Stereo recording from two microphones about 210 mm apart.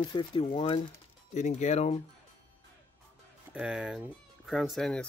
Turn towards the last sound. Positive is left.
turn(degrees=5)  # may be behind; listen again after turning